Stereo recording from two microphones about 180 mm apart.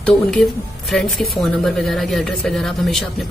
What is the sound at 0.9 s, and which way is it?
A woman's voice, centre (ahead or behind).